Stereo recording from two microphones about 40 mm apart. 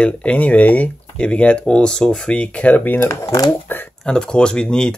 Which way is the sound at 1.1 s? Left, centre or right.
Left.